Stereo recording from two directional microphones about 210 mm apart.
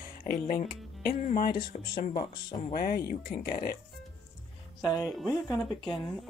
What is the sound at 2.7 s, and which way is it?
Speech, 45° left (ahead or behind).